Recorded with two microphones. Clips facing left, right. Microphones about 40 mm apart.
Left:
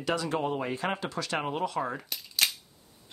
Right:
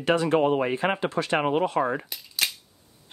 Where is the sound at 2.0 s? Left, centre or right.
Centre.